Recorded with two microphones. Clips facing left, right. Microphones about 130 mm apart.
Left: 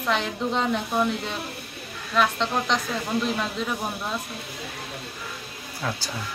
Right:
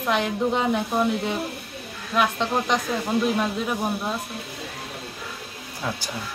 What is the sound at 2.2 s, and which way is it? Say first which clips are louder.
Speech: right 1 dB; 15° right (ahead or behind).